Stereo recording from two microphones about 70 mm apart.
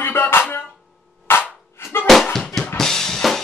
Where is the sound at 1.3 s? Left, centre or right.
Left.